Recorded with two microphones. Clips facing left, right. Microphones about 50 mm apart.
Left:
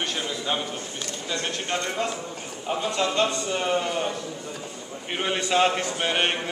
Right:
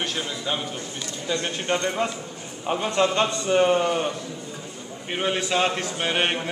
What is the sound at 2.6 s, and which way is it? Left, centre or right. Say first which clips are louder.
A man's voice: right 3 dB; right.